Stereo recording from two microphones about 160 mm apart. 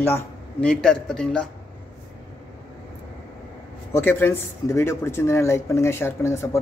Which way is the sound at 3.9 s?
15° left (ahead or behind).